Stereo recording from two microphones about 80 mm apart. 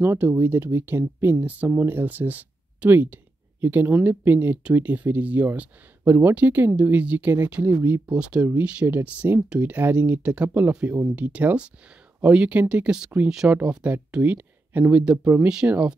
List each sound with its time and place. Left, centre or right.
0.0 s speech: right